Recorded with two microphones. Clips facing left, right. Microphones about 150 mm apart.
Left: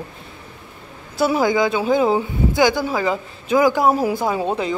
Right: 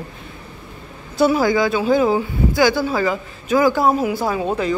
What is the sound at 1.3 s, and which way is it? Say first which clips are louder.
A man's voice: right 1 dB; 20° left (ahead or behind).